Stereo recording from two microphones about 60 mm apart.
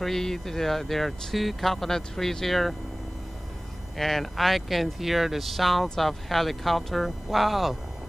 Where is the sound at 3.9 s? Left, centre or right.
Centre.